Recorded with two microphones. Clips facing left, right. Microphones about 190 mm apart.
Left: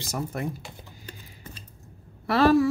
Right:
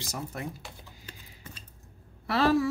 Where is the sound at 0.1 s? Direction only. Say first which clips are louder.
Left 7 dB; 50° left (ahead or behind).